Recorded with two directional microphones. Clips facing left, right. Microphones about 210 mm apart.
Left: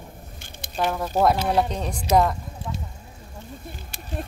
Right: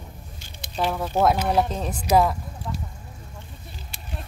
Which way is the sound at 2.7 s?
10° left (ahead or behind).